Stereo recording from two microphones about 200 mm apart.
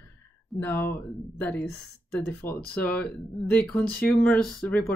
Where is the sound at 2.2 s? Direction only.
10° left (ahead or behind).